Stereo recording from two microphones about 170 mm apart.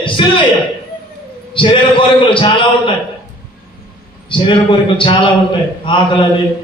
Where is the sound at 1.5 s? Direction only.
30° left (ahead or behind).